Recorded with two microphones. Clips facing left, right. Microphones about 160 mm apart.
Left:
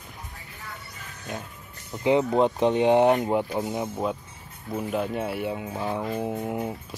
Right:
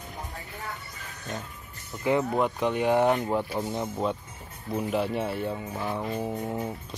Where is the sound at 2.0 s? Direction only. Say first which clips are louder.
Left 4 dB; 20° left (ahead or behind).